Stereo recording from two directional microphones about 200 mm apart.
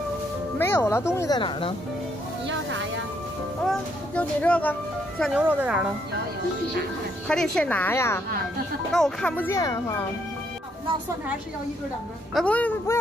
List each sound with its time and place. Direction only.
0.6 s speech: 10° left (ahead or behind)
2.4 s speech: 70° right (ahead or behind)
3.6 s speech: 5° left (ahead or behind)
5.2 s speech: 5° right (ahead or behind)
7.2 s speech: 5° left (ahead or behind)
12.4 s speech: 5° left (ahead or behind)